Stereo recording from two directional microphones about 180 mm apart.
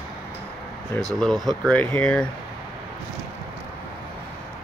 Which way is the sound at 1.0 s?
Centre (ahead or behind).